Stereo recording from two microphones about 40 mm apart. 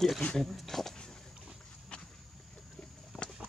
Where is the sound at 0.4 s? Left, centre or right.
Centre.